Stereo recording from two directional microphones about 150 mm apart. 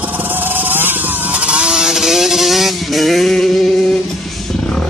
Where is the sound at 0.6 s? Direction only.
15° right (ahead or behind).